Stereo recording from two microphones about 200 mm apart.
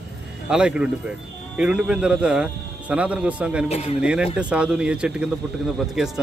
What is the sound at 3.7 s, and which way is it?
Speech, 30° left (ahead or behind).